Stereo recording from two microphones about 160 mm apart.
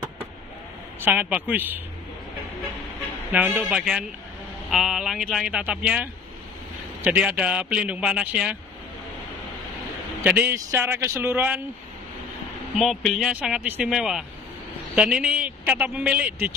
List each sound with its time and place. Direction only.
1.0 s a man's voice: 10° right (ahead or behind)
3.3 s a man's voice: 5° right (ahead or behind)
10.2 s a man's voice: 10° right (ahead or behind)
12.7 s a man's voice: centre (ahead or behind)